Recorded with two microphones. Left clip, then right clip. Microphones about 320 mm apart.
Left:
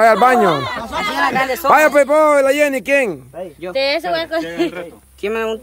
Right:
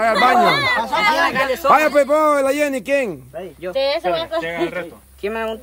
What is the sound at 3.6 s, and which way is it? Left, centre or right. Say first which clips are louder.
Speech: left 1 dB; left.